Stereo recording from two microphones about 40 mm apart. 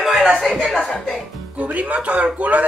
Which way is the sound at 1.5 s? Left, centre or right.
Right.